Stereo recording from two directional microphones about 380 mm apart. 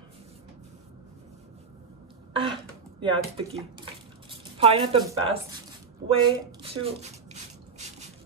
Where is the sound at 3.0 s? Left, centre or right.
Centre.